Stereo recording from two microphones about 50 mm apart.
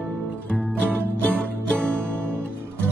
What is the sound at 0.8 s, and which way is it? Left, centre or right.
Music, left.